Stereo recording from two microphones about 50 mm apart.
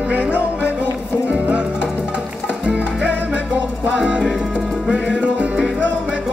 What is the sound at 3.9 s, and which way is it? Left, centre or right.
Music, right.